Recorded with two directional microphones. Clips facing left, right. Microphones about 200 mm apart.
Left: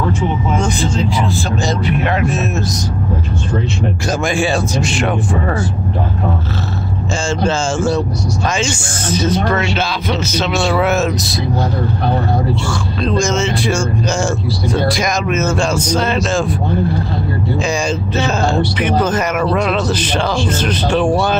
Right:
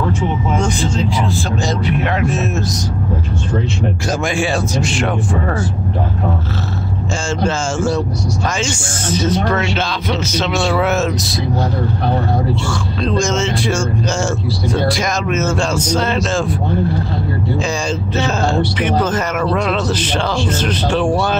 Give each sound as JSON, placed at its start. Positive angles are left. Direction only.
{"t": 0.6, "sound": "speech", "side_deg": 5}
{"t": 4.2, "sound": "speech", "side_deg": 35}
{"t": 4.9, "sound": "speech", "side_deg": 15}
{"t": 7.2, "sound": "speech", "side_deg": 25}
{"t": 9.5, "sound": "speech", "side_deg": 5}
{"t": 13.0, "sound": "speech", "side_deg": 10}
{"t": 17.6, "sound": "speech", "side_deg": 15}